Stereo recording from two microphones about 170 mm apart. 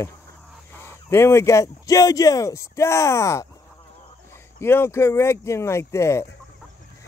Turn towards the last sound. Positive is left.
turn(degrees=15)  # may be behind; listen again after turning